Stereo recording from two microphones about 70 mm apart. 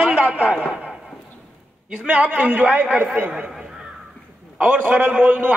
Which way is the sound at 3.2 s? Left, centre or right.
Centre.